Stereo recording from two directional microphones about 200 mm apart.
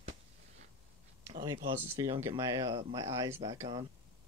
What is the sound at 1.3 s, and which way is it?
Speech, 25° right (ahead or behind).